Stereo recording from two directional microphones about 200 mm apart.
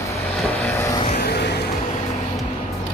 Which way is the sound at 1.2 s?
55° left (ahead or behind).